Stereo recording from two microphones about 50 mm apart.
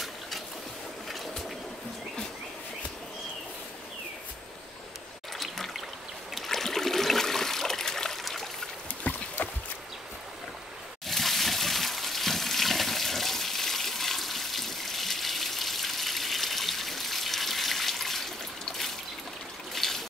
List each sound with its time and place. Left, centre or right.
5.4 s trickle: centre
6.3 s water: centre
9.1 s a sound: left
11.1 s water: centre
19.7 s water: centre